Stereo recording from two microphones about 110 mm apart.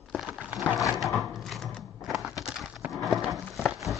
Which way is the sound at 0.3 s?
10° right (ahead or behind).